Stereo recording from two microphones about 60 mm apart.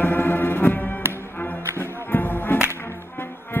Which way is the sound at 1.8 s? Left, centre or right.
Left.